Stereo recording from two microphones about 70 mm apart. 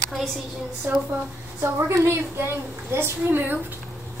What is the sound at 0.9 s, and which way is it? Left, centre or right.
A woman's voice, right.